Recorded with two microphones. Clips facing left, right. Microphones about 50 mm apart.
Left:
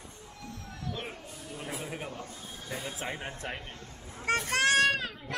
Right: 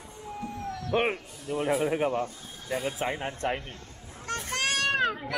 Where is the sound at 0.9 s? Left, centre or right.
Right.